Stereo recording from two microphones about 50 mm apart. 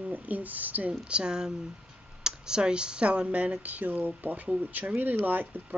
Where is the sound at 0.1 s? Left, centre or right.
Right.